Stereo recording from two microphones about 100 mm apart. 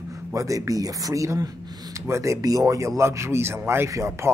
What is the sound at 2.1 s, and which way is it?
Speech, 30° right (ahead or behind).